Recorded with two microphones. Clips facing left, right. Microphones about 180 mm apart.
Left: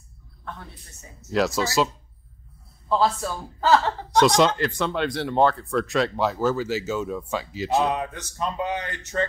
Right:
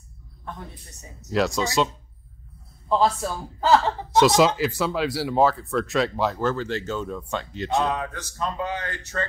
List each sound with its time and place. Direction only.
1.3 s speech: centre (ahead or behind)
2.9 s a man's voice: 10° right (ahead or behind)
4.1 s speech: 5° right (ahead or behind)
7.9 s speech: 15° left (ahead or behind)